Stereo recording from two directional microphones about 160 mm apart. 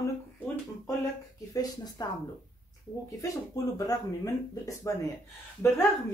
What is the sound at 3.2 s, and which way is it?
Speech, 20° left (ahead or behind).